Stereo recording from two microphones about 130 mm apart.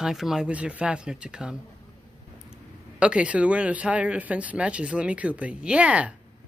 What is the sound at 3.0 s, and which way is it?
Speech, 10° right (ahead or behind).